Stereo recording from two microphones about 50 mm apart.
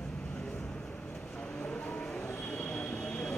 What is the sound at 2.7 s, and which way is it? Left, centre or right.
Train, centre.